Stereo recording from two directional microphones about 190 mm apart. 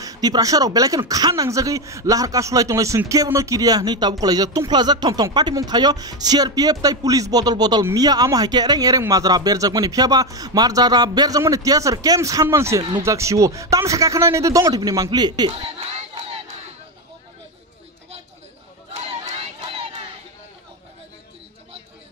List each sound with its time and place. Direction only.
0.0 s speech: 20° right (ahead or behind)
18.9 s crowd: 30° right (ahead or behind)